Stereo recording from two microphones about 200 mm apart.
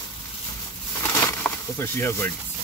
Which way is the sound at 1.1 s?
10° left (ahead or behind).